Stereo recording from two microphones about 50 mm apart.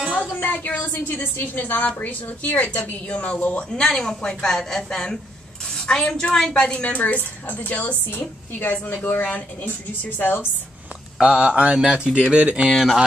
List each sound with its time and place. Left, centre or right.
0.3 s a woman's voice: left
3.8 s a woman's voice: centre
5.8 s a sound: centre
6.1 s a woman's voice: centre
6.6 s a woman's voice: left
11.1 s mantra: right